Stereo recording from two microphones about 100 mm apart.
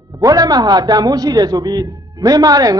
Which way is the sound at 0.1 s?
40° right (ahead or behind).